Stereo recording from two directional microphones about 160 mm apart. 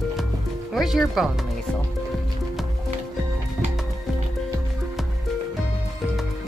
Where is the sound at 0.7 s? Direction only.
Centre (ahead or behind).